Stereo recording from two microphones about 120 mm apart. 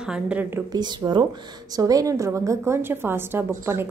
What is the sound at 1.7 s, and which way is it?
A woman's voice, 30° right (ahead or behind).